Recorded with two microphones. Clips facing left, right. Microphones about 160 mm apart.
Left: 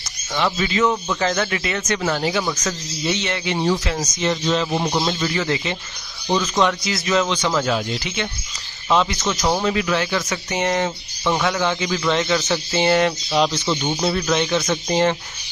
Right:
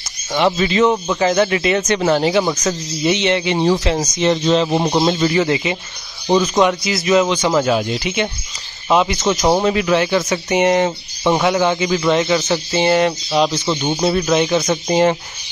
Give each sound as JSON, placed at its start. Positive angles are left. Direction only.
{"t": 0.5, "sound": "speech", "side_deg": -30}
{"t": 2.0, "sound": "a man's voice", "side_deg": -30}
{"t": 12.1, "sound": "a man's voice", "side_deg": -10}